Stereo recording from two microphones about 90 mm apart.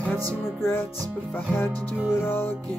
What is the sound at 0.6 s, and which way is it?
Speech, 25° left (ahead or behind).